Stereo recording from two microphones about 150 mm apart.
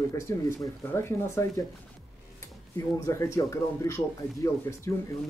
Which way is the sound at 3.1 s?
20° left (ahead or behind).